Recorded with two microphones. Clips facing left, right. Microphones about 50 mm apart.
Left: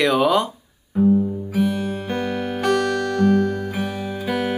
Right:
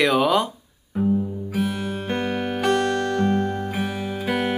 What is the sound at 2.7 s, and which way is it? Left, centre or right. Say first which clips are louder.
Music: left 1 dB; right.